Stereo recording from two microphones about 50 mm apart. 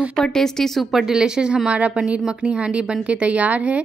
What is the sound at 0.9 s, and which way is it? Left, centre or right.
Speech, centre.